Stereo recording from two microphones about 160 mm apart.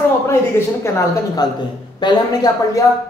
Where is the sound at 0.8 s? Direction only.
15° left (ahead or behind).